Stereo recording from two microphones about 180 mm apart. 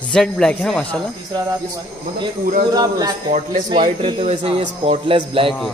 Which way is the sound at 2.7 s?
20° right (ahead or behind).